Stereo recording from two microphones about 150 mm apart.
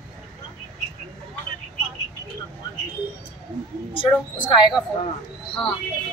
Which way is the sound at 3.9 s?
35° left (ahead or behind).